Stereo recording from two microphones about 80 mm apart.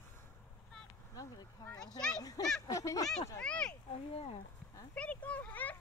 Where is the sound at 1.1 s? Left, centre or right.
Left.